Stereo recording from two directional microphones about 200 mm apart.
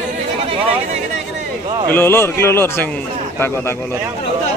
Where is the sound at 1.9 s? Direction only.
10° left (ahead or behind).